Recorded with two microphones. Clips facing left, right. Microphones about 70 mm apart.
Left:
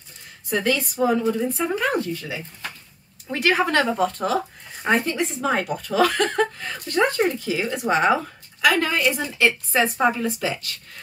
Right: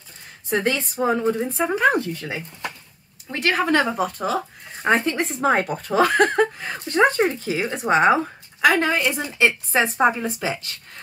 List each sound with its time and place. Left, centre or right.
0.5 s speech: right
2.1 s speech: right
3.3 s speech: centre
4.8 s speech: right